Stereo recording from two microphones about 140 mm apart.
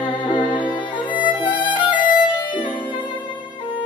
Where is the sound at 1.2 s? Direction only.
35° left (ahead or behind).